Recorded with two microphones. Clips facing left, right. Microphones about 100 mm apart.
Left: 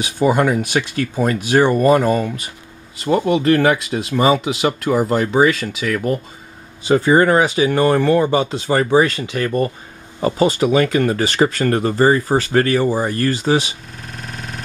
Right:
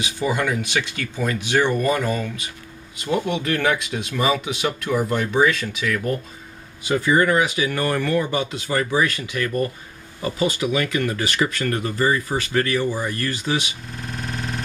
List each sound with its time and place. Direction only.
0.0 s speech: 45° left (ahead or behind)
3.4 s speech: 35° left (ahead or behind)
6.8 s speech: 35° left (ahead or behind)
14.0 s synthesizer: centre (ahead or behind)